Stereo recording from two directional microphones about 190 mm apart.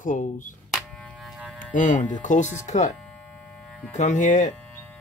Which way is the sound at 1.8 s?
40° left (ahead or behind).